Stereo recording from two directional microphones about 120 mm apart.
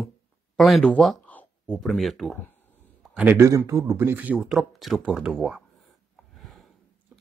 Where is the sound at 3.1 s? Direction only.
15° right (ahead or behind).